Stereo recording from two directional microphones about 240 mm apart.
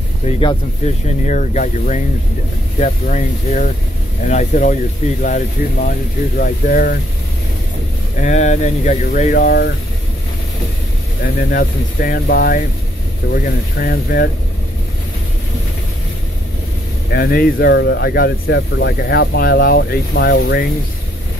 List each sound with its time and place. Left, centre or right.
1.0 s speech: left
8.2 s speech: left
11.2 s speech: left
17.1 s speech: left